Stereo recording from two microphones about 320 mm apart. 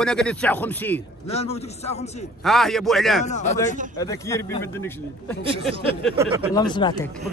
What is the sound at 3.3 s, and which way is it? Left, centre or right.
Speech, left.